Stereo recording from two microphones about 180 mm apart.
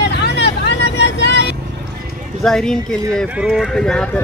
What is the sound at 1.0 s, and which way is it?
Vehicle, 75° left (ahead or behind).